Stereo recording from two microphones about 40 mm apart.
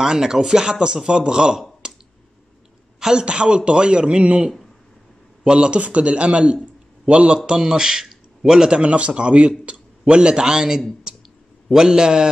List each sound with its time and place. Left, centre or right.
0.0 s speech: centre
1.6 s clicking: centre
3.0 s a man's voice: centre
7.3 s speech: centre
11.1 s clicking: centre
11.7 s speech: centre